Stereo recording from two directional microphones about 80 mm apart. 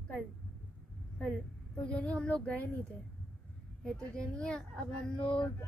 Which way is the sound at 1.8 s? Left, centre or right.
Centre.